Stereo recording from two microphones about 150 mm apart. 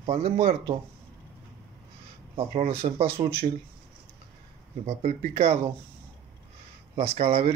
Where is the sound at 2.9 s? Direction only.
40° right (ahead or behind).